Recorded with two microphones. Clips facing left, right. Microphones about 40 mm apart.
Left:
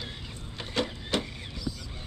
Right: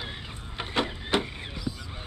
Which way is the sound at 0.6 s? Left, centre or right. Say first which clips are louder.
Right 2 dB; right.